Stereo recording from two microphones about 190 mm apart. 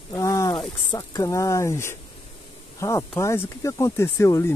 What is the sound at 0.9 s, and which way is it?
Speech, 20° left (ahead or behind).